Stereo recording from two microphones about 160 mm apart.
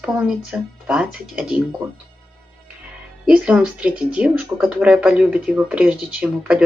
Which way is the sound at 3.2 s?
10° right (ahead or behind).